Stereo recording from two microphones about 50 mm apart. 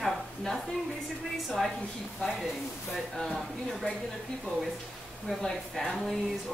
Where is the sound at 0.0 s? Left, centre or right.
Centre.